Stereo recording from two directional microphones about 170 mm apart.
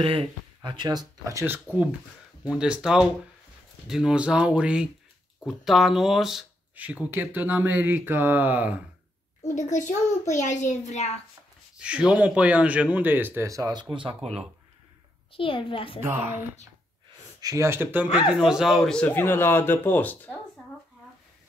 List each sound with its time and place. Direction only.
0.0 s speech: 30° right (ahead or behind); by 8.8 s 10° right (ahead or behind)
9.6 s a child's voice: 45° left (ahead or behind)
11.8 s speech: 5° right (ahead or behind); by 14.4 s 35° right (ahead or behind)
15.3 s a child's voice: 30° left (ahead or behind)
17.4 s a man's voice: 20° right (ahead or behind); by 20.3 s 10° left (ahead or behind)